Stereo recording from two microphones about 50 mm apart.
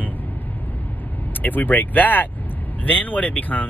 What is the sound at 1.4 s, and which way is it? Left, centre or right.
Speech, left.